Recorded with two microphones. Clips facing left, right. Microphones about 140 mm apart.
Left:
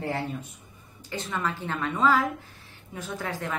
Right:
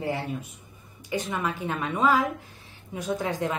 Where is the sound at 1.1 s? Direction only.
15° right (ahead or behind).